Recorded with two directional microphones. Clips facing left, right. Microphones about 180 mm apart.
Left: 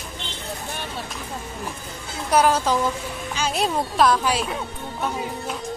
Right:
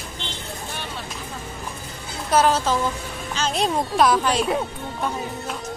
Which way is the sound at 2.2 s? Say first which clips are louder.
Even; 10° left (ahead or behind).